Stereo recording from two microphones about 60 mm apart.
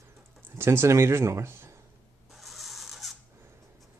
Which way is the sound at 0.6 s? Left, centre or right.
Right.